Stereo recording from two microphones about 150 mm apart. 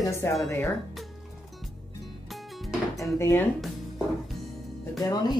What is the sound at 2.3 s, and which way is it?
Music, centre (ahead or behind).